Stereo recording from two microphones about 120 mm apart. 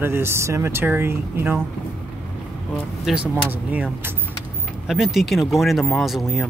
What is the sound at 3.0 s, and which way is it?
Speech, 5° right (ahead or behind).